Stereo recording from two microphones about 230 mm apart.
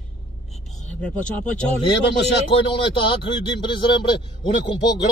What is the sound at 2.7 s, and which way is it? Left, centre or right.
Speech, left.